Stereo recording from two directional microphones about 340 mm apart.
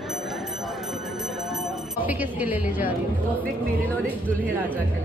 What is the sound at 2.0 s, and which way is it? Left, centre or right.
Speech, centre.